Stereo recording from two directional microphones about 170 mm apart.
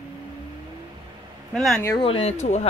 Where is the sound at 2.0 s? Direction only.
35° left (ahead or behind).